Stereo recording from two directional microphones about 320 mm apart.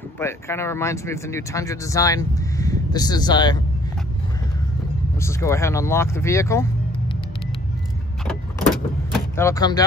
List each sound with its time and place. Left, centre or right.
0.2 s speech: centre
5.2 s speech: centre
9.4 s speech: centre